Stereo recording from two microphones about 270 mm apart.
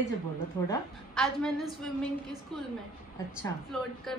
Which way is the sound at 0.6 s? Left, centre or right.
Centre.